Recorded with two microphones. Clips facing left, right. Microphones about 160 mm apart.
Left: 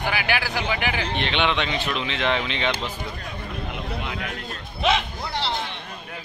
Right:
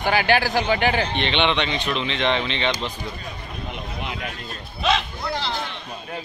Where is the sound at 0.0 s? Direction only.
35° right (ahead or behind).